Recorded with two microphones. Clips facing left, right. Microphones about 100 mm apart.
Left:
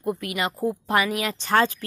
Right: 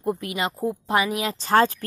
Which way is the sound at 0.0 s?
25° right (ahead or behind).